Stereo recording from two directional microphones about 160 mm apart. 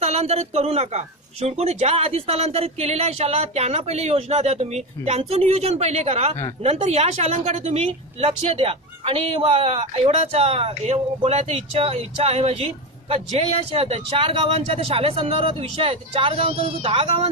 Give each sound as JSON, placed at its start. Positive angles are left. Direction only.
{"t": 0.0, "sound": "speech", "side_deg": -40}